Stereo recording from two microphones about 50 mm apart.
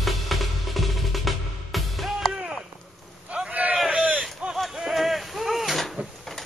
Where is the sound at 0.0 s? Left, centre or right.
Centre.